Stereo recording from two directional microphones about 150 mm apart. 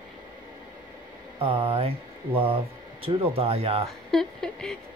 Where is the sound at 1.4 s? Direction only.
40° right (ahead or behind).